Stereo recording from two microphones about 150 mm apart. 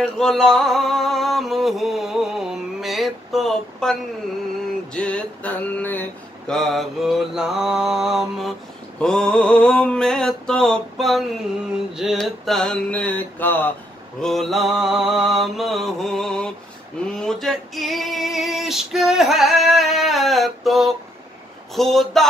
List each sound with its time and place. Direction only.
0.0 s a sound: 5° left (ahead or behind)
4.9 s speech: 10° left (ahead or behind)
6.5 s female singing: centre (ahead or behind)
14.2 s female singing: centre (ahead or behind)